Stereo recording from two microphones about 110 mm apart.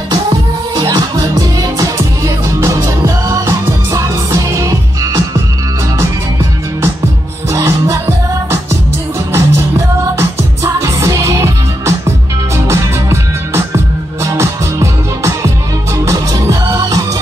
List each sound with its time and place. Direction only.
0.1 s music: 35° right (ahead or behind)
7.5 s music: 25° right (ahead or behind)
9.3 s music: 25° right (ahead or behind)